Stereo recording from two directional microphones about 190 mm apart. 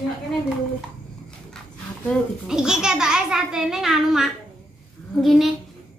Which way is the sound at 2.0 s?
5° right (ahead or behind).